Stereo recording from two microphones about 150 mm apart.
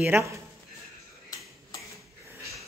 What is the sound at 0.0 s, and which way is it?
Speech, 15° right (ahead or behind).